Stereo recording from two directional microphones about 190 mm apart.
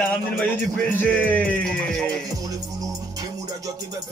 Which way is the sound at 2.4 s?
20° right (ahead or behind).